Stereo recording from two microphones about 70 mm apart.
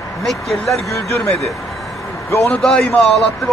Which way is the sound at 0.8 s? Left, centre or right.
Left.